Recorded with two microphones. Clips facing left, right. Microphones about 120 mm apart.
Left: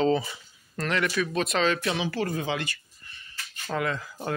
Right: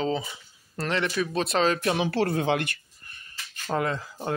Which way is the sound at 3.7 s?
35° right (ahead or behind).